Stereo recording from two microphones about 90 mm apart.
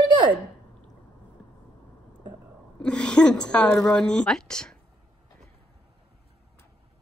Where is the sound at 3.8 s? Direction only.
10° left (ahead or behind).